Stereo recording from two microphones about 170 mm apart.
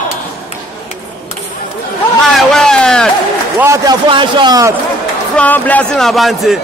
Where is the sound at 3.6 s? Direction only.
20° right (ahead or behind).